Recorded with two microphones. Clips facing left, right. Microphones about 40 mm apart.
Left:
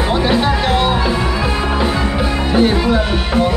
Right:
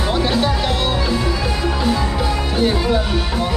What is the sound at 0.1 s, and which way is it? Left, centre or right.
Music, centre.